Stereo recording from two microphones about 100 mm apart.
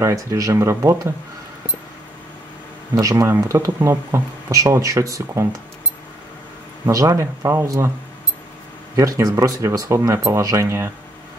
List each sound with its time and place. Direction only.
0.0 s speech: 35° right (ahead or behind)
2.9 s speech: 35° right (ahead or behind)
6.9 s speech: 30° right (ahead or behind)
8.9 s speech: 35° right (ahead or behind)